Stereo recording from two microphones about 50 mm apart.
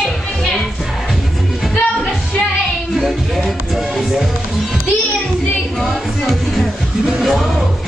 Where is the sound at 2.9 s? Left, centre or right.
Centre.